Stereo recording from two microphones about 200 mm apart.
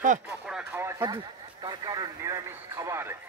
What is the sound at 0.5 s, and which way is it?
Speech, 5° right (ahead or behind).